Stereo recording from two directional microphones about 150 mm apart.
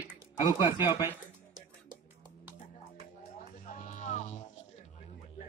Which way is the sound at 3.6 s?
60° left (ahead or behind).